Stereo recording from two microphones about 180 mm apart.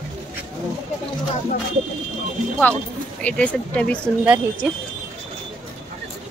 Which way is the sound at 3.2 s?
5° left (ahead or behind).